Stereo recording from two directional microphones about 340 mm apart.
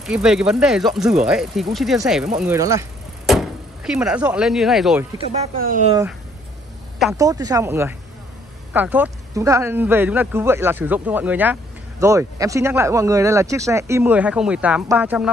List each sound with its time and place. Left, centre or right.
0.0 s speech: centre
5.3 s speech: right
7.0 s speech: centre